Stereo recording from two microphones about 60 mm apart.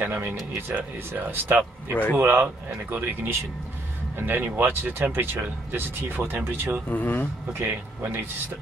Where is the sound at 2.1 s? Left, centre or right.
Right.